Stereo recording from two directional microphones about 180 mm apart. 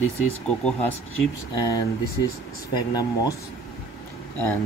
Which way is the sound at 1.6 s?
20° left (ahead or behind).